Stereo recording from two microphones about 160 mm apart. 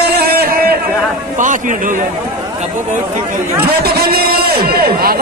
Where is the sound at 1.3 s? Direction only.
55° right (ahead or behind).